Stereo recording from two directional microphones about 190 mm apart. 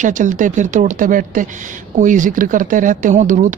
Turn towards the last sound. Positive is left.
turn(degrees=-40)  # may be behind; listen again after turning